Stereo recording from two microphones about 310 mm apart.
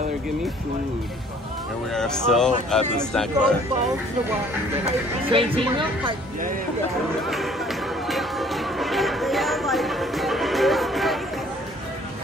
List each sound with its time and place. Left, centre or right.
2.0 s speech: centre
5.3 s speech: centre
7.2 s music: centre